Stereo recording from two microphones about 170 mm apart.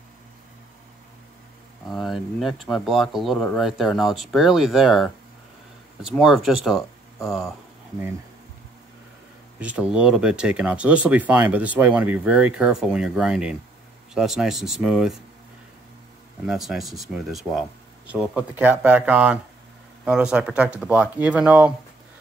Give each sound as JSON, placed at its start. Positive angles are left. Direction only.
{"t": 1.9, "sound": "speech", "side_deg": 0}
{"t": 9.6, "sound": "speech", "side_deg": -5}
{"t": 16.4, "sound": "speech", "side_deg": 0}